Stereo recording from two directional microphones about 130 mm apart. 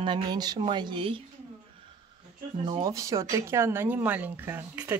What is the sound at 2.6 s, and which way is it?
Speech, 40° right (ahead or behind).